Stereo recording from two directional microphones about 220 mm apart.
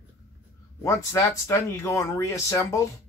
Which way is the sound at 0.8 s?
15° left (ahead or behind).